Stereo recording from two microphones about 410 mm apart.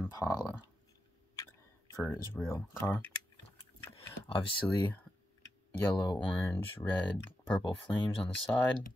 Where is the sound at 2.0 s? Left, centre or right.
Centre.